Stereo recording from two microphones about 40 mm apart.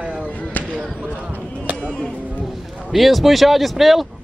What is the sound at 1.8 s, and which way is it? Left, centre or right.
Music, left.